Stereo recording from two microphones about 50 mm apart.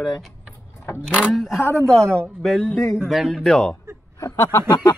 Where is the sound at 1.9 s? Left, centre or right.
Centre.